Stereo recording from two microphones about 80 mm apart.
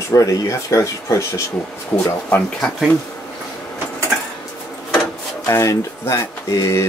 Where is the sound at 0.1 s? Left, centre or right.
Left.